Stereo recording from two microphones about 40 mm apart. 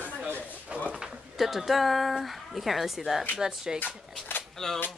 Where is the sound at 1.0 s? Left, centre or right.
Centre.